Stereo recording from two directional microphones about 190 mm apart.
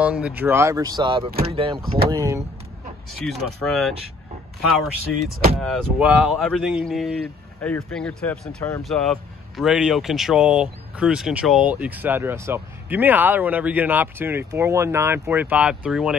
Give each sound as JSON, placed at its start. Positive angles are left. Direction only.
{"t": 0.0, "sound": "speech", "side_deg": -5}
{"t": 2.0, "sound": "speech", "side_deg": -15}
{"t": 3.2, "sound": "speech", "side_deg": 0}
{"t": 5.6, "sound": "speech", "side_deg": 5}